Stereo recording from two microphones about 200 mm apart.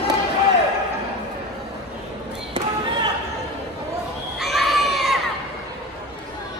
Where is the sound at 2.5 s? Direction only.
25° right (ahead or behind).